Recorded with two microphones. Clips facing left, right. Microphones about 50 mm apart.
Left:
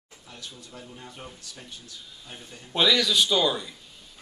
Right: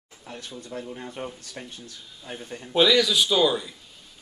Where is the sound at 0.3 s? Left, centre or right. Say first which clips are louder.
Right 7 dB; right.